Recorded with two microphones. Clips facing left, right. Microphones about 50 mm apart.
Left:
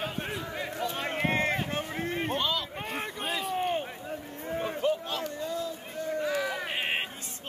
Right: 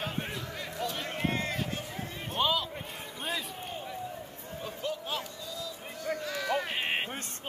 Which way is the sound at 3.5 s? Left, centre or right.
Left.